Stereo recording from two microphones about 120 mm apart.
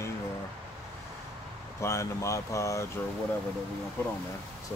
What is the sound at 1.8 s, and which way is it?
Speech, 25° left (ahead or behind).